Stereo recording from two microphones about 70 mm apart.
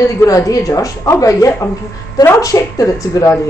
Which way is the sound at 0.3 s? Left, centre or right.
Left.